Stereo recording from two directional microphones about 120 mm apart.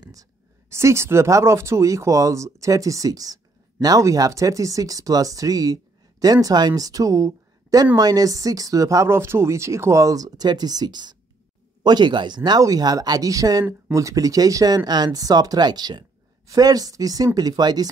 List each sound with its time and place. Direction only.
0.0 s speech: 30° right (ahead or behind)